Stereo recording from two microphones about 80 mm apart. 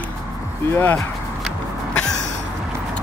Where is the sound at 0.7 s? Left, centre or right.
Left.